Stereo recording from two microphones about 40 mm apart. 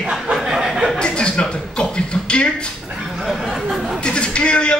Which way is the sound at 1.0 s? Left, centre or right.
Left.